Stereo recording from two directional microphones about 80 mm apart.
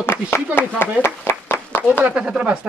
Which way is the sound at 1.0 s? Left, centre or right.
Left.